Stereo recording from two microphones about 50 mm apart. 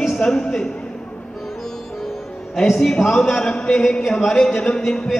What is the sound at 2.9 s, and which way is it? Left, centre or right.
A man's voice, centre.